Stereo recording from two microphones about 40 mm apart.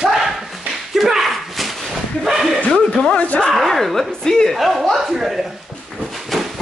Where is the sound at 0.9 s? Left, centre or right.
Centre.